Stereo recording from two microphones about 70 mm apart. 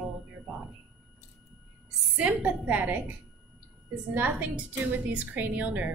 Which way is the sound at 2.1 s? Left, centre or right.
Centre.